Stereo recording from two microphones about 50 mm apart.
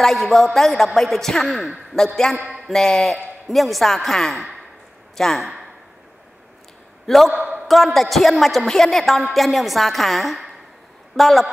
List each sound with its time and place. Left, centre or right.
0.0 s a woman's voice: centre
7.1 s a woman's voice: centre
7.3 s a sound: right
7.6 s a woman's voice: centre